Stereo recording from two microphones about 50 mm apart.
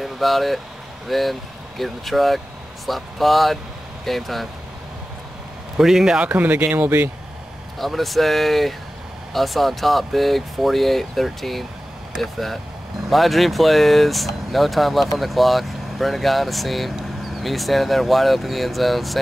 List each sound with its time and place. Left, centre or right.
0.0 s speech: centre
5.8 s a man's voice: centre
6.3 s speech: right
7.8 s speech: centre